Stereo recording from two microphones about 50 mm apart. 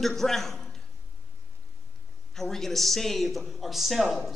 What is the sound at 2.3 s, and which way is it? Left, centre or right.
A woman's voice, centre.